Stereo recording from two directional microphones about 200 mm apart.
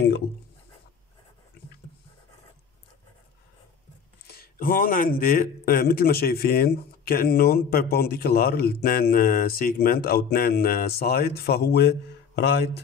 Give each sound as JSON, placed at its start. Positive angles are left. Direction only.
{"t": 4.3, "sound": "speech", "side_deg": 50}